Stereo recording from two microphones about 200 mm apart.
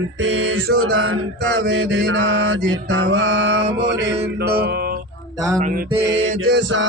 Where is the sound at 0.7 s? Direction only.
90° right.